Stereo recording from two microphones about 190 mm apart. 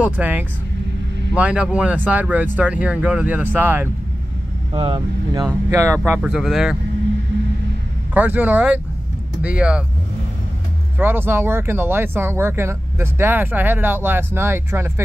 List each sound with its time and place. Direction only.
0.0 s speech: 10° right (ahead or behind)
4.7 s speech: 25° right (ahead or behind); by 6.8 s centre (ahead or behind)
8.1 s speech: 10° right (ahead or behind)
11.0 s speech: 10° right (ahead or behind)